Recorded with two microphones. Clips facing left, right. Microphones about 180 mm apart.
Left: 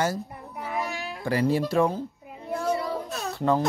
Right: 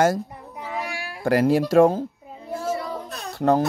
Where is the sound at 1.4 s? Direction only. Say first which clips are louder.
Right 4 dB; 90° right.